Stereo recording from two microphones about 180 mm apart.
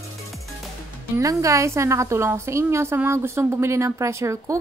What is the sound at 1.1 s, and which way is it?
A woman's voice, 15° right (ahead or behind).